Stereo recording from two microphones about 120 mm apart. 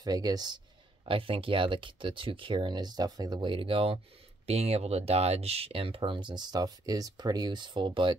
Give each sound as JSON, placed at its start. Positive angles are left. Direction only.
{"t": 0.0, "sound": "speech", "side_deg": -30}
{"t": 1.0, "sound": "speech", "side_deg": -45}